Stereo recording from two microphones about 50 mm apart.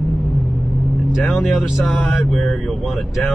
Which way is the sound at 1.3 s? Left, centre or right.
Centre.